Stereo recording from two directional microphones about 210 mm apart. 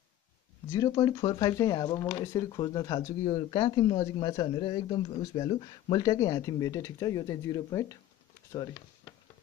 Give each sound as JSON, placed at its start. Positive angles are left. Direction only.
{"t": 0.7, "sound": "speech", "side_deg": 15}